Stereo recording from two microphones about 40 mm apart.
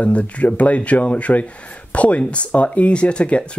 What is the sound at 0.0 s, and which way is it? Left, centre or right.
Speech, left.